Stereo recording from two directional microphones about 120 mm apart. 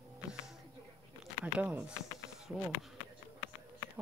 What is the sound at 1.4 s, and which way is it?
Speech, 10° right (ahead or behind).